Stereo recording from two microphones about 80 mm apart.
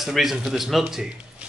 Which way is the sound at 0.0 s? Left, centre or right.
Centre.